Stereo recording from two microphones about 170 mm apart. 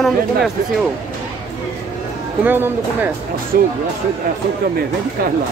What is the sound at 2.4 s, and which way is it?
Speech, 10° right (ahead or behind).